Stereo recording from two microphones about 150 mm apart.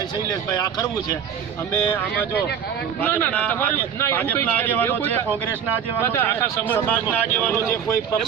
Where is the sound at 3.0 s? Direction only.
15° left (ahead or behind).